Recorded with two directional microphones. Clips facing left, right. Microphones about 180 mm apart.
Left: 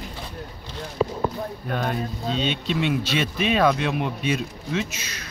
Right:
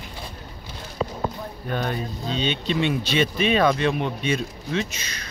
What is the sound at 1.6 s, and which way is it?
Speech, centre (ahead or behind).